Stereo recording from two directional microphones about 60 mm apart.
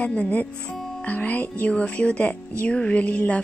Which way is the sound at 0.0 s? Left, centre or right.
Left.